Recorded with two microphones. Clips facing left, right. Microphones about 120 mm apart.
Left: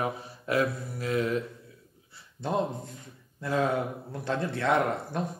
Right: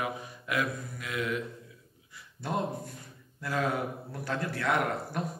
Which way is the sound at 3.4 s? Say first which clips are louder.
Left 3 dB; 25° left (ahead or behind).